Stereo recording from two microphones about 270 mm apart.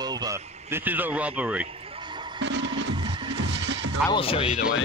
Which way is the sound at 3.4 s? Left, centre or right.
Right.